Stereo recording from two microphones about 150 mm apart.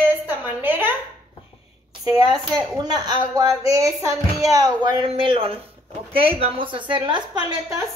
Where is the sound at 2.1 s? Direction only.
25° right (ahead or behind).